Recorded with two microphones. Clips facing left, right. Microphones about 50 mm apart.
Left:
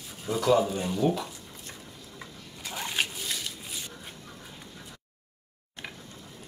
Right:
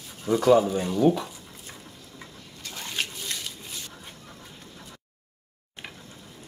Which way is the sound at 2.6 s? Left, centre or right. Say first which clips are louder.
Left 2 dB; centre.